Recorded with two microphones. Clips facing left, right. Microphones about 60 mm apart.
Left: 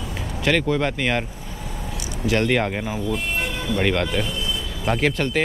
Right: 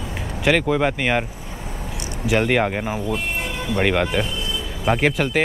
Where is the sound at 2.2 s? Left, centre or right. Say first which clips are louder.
Right 2 dB; centre.